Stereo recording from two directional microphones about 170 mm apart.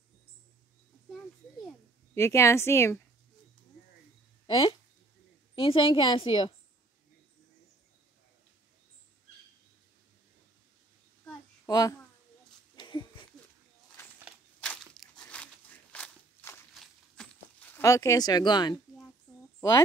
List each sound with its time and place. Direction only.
2.1 s speech: 15° left (ahead or behind)
4.5 s a woman's voice: 25° left (ahead or behind)
11.6 s a child's voice: 20° left (ahead or behind)
12.7 s a sound: 25° left (ahead or behind)
14.6 s crunch: 5° left (ahead or behind)
16.7 s a sound: centre (ahead or behind); by 18.8 s 25° left (ahead or behind)